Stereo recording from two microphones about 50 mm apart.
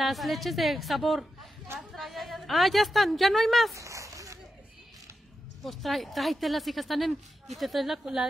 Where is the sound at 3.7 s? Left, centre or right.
Right.